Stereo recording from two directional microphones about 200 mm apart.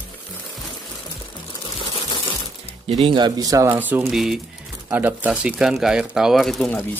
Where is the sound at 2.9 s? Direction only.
25° right (ahead or behind); by 6.9 s 5° left (ahead or behind).